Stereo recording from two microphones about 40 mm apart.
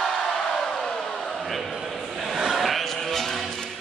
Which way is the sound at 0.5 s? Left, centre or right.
Centre.